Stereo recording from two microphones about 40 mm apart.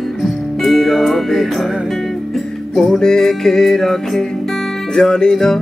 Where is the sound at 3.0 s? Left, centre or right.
Centre.